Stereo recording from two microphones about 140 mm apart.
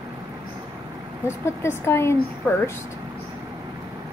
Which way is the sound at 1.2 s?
20° left (ahead or behind).